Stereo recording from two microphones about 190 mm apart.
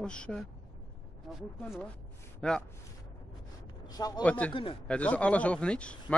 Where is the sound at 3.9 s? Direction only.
20° left (ahead or behind).